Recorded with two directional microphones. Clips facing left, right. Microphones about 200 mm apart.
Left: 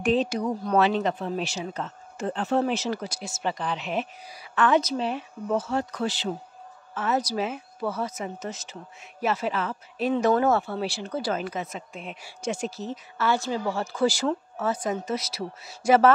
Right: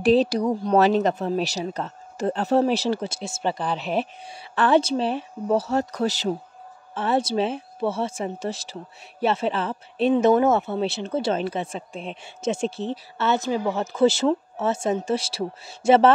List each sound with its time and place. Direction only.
0.0 s speech: 35° right (ahead or behind)
6.9 s speech: 30° right (ahead or behind)